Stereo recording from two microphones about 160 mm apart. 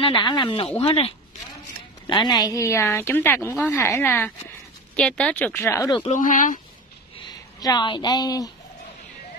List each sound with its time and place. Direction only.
0.0 s a woman's voice: 30° left (ahead or behind); by 5.9 s 15° left (ahead or behind)
6.0 s speech: 55° left (ahead or behind)
7.2 s a woman's voice: 25° left (ahead or behind)